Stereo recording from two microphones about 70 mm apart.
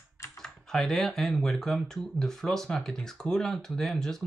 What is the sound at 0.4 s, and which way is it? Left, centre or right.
Speech, centre.